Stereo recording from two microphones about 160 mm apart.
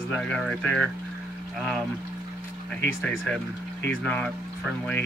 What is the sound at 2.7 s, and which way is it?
Speech, 5° left (ahead or behind).